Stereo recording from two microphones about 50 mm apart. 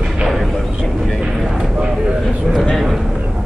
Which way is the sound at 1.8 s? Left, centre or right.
Centre.